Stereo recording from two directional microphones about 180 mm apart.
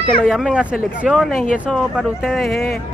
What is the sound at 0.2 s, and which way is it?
Speech, centre (ahead or behind).